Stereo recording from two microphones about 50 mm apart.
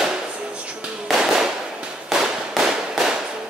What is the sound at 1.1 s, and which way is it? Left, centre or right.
Firecracker, centre.